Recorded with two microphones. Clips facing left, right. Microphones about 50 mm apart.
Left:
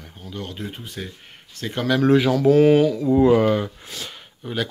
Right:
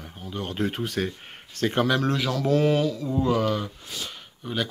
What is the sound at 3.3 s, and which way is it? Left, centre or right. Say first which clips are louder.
Speech: left 7 dB; left.